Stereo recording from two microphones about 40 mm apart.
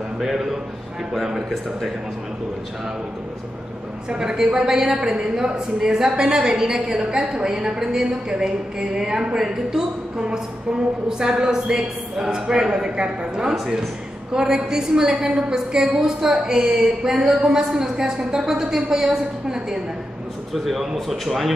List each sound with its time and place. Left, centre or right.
0.2 s a woman's voice: centre
4.1 s a woman's voice: centre
13.5 s a woman's voice: centre